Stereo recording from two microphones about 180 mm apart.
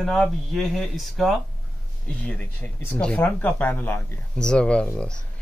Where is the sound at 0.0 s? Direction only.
Centre (ahead or behind).